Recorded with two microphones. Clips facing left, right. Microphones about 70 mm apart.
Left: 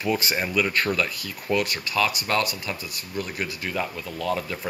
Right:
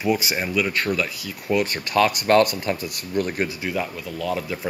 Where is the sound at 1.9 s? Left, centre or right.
Right.